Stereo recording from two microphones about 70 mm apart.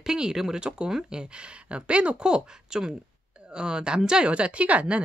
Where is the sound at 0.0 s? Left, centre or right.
Centre.